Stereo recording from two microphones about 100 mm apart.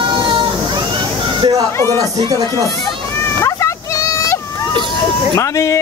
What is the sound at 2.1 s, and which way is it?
Speech, 45° right (ahead or behind).